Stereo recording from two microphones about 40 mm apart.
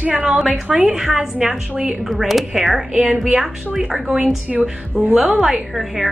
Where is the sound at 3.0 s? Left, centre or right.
Right.